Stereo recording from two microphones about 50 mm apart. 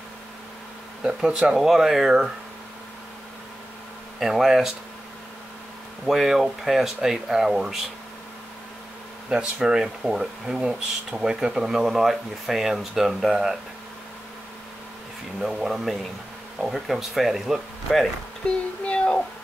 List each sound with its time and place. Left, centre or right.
1.0 s speech: centre
4.2 s speech: centre
6.0 s speech: centre
9.3 s speech: centre
15.4 s speech: centre
18.9 s a sound: left